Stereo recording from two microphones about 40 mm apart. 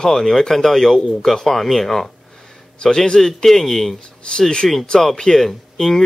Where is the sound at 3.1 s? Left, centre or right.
Centre.